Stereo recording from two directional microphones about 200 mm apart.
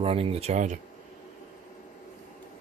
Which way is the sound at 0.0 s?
30° right (ahead or behind).